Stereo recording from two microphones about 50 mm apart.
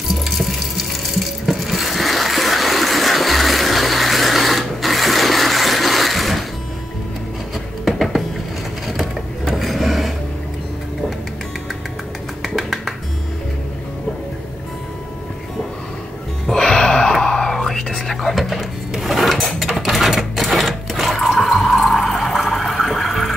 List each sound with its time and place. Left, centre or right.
0.1 s a sound: centre
7.8 s a sound: centre
12.4 s music: centre
16.5 s music: centre
17.1 s whispering: centre
18.3 s drawer open or close: centre